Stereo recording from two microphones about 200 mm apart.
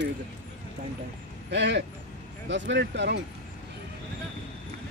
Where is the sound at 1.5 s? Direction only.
60° right (ahead or behind).